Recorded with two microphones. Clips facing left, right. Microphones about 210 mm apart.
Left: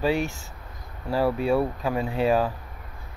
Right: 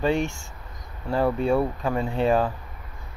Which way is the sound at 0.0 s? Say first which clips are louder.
Right 1 dB; 5° left (ahead or behind).